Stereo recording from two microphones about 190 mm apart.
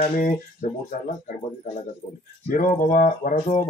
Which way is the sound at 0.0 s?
35° left (ahead or behind).